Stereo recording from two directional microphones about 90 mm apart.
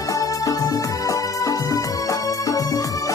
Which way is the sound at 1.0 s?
40° left (ahead or behind).